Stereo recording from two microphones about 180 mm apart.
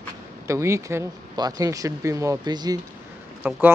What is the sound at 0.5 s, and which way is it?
Speech, 15° right (ahead or behind).